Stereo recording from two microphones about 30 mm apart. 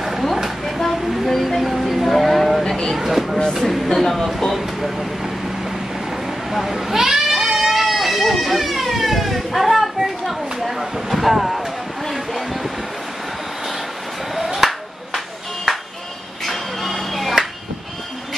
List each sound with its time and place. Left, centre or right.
0.9 s music: centre
1.6 s a sound: centre
3.0 s vehicle: centre
3.5 s speech: centre
4.8 s speech: centre
6.5 s goat: centre
7.7 s a sound: centre
14.3 s clapping: centre
15.1 s music: centre